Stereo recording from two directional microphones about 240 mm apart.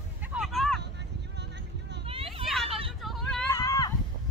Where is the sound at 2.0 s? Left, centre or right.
Right.